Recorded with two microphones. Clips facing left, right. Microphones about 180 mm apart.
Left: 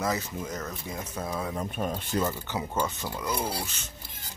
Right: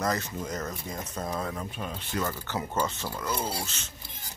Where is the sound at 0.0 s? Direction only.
5° left (ahead or behind).